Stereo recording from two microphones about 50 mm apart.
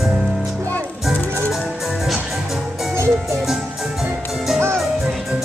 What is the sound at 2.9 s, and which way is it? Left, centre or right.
Music, right.